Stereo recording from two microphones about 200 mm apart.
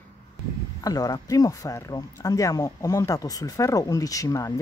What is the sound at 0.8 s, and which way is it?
Speech, 20° left (ahead or behind).